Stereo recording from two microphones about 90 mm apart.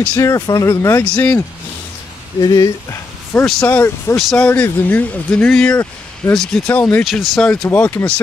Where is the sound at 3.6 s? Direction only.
25° left (ahead or behind).